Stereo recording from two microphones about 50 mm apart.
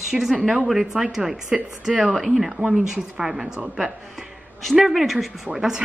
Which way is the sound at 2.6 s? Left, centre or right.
Centre.